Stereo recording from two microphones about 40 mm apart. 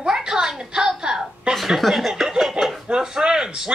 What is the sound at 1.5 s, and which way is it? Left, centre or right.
A woman's voice, centre.